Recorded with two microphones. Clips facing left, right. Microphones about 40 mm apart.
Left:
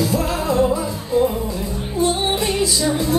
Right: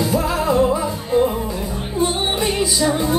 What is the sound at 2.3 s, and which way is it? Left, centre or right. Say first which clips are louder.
Music: even; centre.